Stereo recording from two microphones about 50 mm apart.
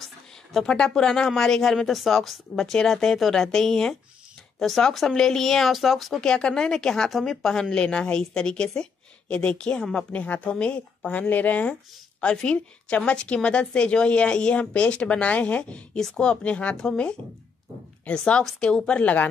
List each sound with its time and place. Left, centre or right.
0.0 s a sound: centre
0.7 s speech: centre
6.2 s speech: centre
7.7 s speech: centre
10.1 s a woman's voice: left
12.2 s a woman's voice: centre